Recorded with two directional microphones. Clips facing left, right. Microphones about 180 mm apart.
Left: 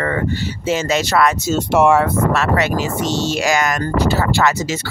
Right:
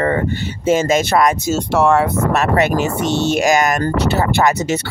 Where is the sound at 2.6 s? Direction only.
55° right (ahead or behind).